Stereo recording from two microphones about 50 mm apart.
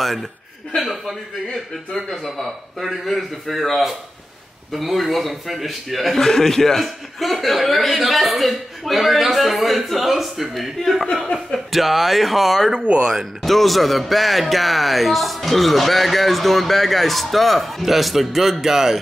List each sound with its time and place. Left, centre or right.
0.0 s a man's voice: centre